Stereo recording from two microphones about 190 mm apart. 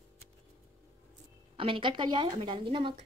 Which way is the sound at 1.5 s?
25° right (ahead or behind).